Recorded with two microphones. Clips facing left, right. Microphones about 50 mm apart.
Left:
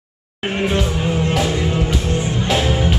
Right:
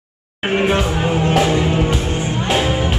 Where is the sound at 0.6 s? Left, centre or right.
Right.